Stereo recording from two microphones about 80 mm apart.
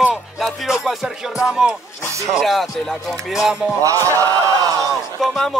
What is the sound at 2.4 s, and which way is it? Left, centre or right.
Music, centre.